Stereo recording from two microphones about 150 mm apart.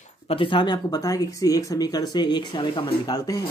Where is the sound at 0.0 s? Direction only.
40° left (ahead or behind).